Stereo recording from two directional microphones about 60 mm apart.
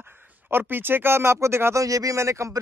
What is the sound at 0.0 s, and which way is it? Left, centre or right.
Speech, right.